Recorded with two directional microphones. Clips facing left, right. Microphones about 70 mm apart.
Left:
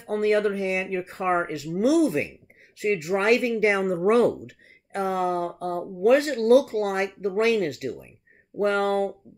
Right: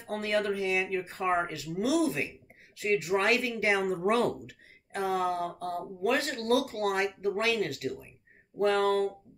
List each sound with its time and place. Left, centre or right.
0.1 s speech: left